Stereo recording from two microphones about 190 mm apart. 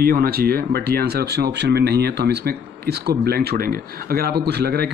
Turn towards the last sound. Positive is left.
turn(degrees=-55)  # may be behind; listen again after turning